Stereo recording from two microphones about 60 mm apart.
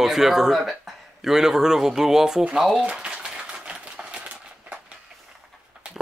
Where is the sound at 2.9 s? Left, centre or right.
Centre.